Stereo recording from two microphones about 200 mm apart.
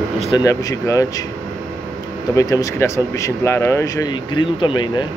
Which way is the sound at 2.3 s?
15° left (ahead or behind).